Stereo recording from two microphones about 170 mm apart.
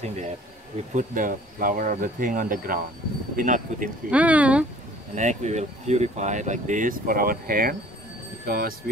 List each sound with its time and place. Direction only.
0.0 s bee: 40° right (ahead or behind)
0.9 s speech: 50° right (ahead or behind)
4.1 s speech: 10° right (ahead or behind)
5.1 s speech: 45° right (ahead or behind); by 8.7 s 60° right (ahead or behind)